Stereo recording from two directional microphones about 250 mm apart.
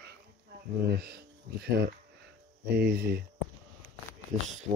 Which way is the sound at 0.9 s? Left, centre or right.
Right.